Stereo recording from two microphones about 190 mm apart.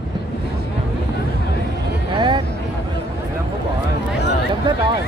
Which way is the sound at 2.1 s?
25° right (ahead or behind).